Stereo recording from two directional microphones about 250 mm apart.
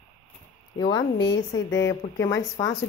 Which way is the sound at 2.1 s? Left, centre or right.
Centre.